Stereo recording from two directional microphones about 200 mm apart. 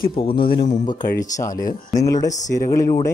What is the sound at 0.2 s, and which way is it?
Speech, 25° left (ahead or behind).